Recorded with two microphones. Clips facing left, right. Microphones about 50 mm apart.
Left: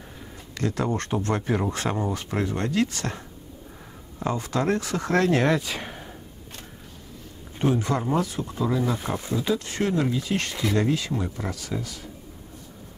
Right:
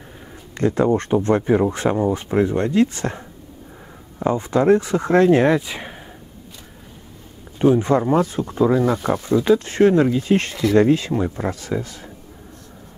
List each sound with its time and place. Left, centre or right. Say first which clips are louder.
0.6 s speech: right 9 dB; right
4.2 s speech: right 7 dB; right
7.5 s speech: right 8 dB; right